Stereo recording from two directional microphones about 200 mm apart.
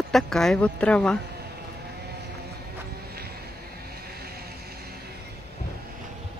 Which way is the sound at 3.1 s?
50° right (ahead or behind).